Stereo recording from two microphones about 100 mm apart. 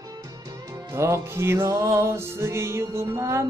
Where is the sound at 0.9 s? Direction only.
30° right (ahead or behind).